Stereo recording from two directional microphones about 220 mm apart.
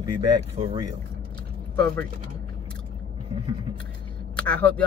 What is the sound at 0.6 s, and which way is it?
Speech, 40° right (ahead or behind).